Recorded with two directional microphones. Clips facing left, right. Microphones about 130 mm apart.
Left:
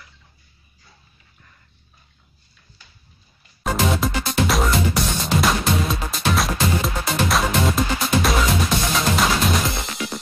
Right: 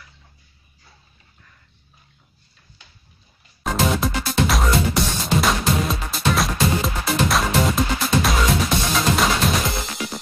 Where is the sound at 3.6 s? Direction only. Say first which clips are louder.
Even; centre (ahead or behind).